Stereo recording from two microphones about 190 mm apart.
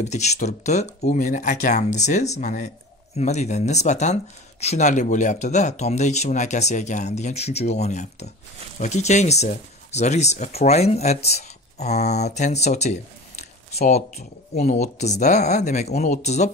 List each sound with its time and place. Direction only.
0.0 s speech: 35° left (ahead or behind)